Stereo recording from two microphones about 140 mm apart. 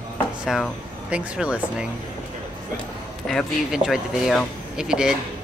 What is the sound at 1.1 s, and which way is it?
Speech, 5° right (ahead or behind).